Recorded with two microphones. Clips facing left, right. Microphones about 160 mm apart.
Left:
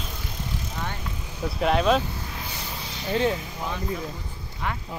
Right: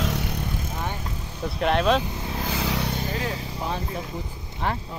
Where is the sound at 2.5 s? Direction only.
90° right.